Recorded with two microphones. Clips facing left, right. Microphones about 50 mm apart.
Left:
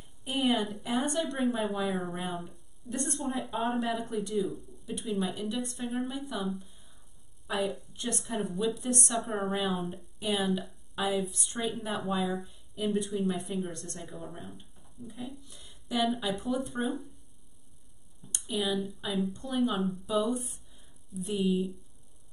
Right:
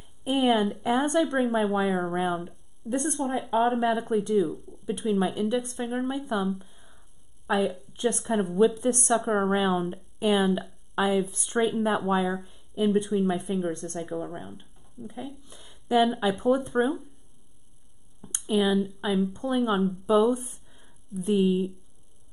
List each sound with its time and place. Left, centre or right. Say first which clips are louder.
0.2 s a woman's voice: right 6 dB; right
1.4 s speech: right 5 dB; centre
6.6 s a sound: right 3 dB; right
7.5 s a woman's voice: right 6 dB; right
8.2 s speech: right 7 dB; centre
8.5 s speech: right 10 dB; right
15.4 s a sound: right 9 dB; right
16.2 s speech: right 8 dB; right
18.5 s speech: right 7 dB; right